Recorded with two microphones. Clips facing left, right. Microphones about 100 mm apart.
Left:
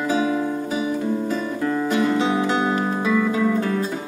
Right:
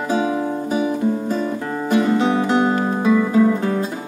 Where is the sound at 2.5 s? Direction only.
45° right (ahead or behind).